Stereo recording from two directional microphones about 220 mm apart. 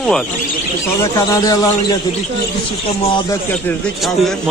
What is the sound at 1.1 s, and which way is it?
Speech, 15° left (ahead or behind).